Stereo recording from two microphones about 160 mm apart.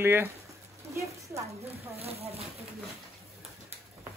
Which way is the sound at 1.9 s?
40° right (ahead or behind).